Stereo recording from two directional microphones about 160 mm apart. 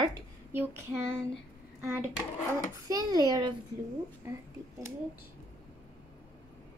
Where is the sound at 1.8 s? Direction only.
15° right (ahead or behind).